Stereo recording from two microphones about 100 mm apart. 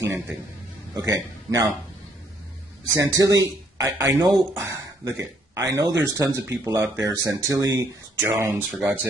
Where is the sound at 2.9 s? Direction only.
35° right (ahead or behind).